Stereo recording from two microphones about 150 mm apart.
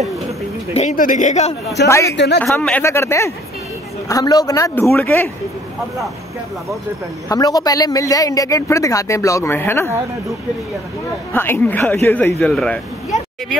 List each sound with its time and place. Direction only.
0.7 s speech: 60° left (ahead or behind)
1.7 s a man's voice: 20° left (ahead or behind)
2.4 s speech: 5° left (ahead or behind)
2.8 s a man's voice: 20° left (ahead or behind)
7.2 s a man's voice: 25° left (ahead or behind)
11.3 s speech: 15° left (ahead or behind)